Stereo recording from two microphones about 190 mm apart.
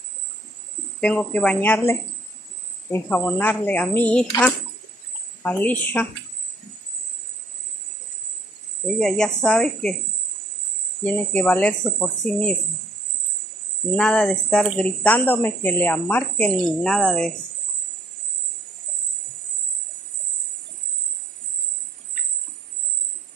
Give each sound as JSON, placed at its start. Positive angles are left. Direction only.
{"t": 1.0, "sound": "speech", "side_deg": 5}
{"t": 5.4, "sound": "speech", "side_deg": 10}
{"t": 8.8, "sound": "speech", "side_deg": 5}
{"t": 11.1, "sound": "speech", "side_deg": 10}
{"t": 13.9, "sound": "speech", "side_deg": 5}